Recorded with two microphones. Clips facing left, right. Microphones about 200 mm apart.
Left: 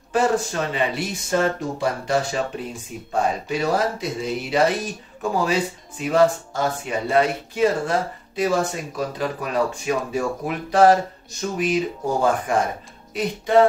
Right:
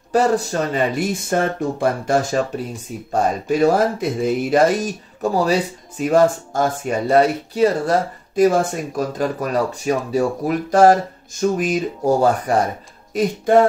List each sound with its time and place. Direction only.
0.1 s speech: 40° right (ahead or behind)